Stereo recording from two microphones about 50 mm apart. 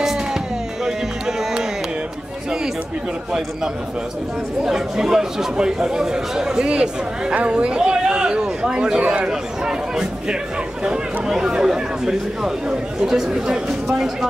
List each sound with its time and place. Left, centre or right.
0.0 s music: centre
4.6 s speech: centre
9.3 s speech: centre